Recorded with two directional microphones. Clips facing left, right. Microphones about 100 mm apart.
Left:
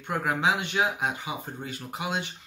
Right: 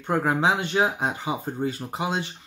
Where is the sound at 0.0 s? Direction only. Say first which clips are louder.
Right 4 dB; 30° right (ahead or behind).